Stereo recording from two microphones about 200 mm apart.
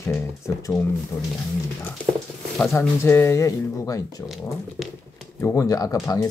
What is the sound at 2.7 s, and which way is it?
Speech, 10° left (ahead or behind).